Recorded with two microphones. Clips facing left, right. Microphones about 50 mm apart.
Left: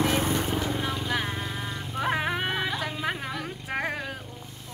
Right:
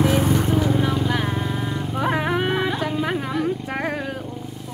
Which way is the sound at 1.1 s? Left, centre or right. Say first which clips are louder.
Right 6 dB; centre.